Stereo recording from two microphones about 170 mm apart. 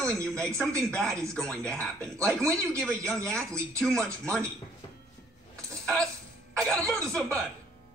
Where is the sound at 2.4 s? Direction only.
15° right (ahead or behind).